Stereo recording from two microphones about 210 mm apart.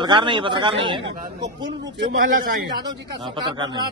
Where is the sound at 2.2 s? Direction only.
40° right (ahead or behind).